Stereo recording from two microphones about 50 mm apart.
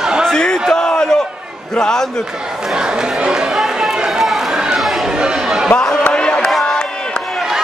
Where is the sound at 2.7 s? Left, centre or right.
Centre.